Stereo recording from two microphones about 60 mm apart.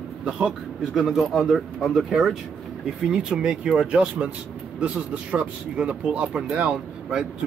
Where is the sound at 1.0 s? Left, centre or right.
Centre.